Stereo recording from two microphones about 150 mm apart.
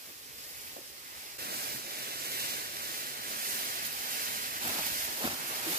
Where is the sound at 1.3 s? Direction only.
90° right; by 5.0 s 70° right (ahead or behind).